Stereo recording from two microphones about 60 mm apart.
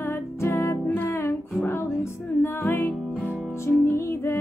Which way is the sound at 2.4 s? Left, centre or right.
Left.